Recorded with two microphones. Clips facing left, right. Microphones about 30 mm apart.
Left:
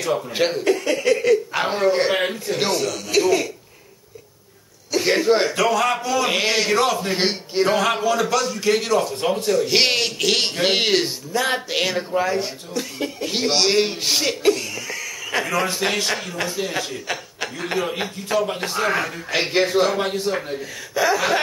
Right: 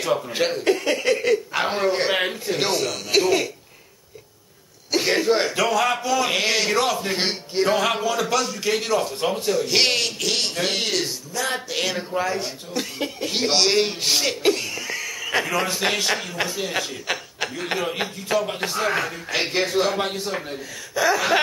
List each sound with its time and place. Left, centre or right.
0.3 s a man's voice: centre
0.7 s speech: centre
5.0 s a man's voice: centre
10.6 s speech: left
11.9 s a man's voice: centre
12.7 s speech: centre
13.2 s a man's voice: centre
14.4 s a man's voice: centre